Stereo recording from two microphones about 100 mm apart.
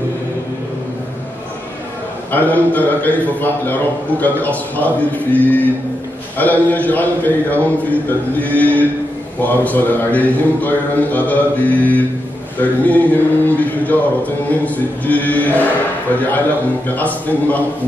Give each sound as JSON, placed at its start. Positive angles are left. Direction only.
{"t": 2.3, "sound": "a man's voice", "side_deg": 15}
{"t": 16.8, "sound": "a man's voice", "side_deg": 15}